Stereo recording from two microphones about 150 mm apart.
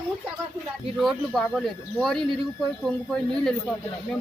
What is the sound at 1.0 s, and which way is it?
Speech, centre (ahead or behind).